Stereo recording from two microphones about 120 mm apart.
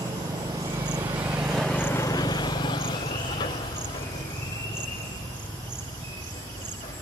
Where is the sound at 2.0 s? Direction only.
35° left (ahead or behind).